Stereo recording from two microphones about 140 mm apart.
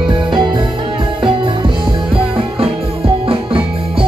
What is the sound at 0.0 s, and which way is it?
Music, 35° right (ahead or behind).